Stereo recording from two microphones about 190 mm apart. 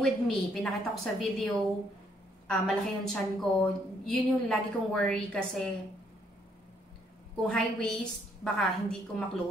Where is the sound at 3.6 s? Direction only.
5° left (ahead or behind).